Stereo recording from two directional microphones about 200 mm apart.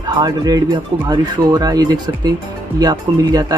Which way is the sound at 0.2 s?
20° right (ahead or behind).